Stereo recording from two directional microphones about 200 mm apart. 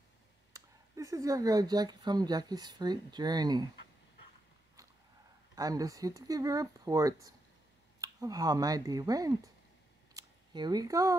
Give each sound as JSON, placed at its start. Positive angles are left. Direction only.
{"t": 0.5, "sound": "speech", "side_deg": -15}
{"t": 5.6, "sound": "speech", "side_deg": -15}
{"t": 10.1, "sound": "a sound", "side_deg": -20}